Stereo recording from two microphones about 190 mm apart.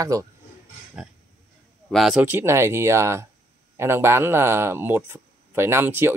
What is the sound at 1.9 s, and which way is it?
Speech, centre (ahead or behind).